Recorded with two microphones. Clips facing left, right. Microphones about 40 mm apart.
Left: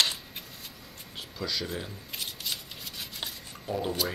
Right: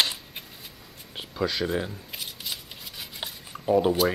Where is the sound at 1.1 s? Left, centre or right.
Right.